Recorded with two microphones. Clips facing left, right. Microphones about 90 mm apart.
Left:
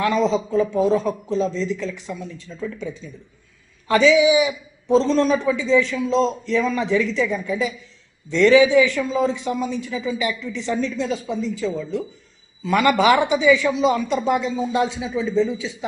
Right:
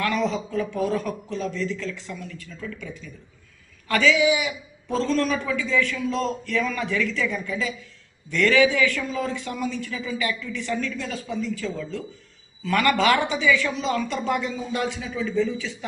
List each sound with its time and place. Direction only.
0.0 s a man's voice: 20° left (ahead or behind)